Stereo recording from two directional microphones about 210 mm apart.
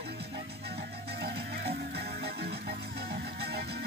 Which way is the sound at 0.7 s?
50° right (ahead or behind).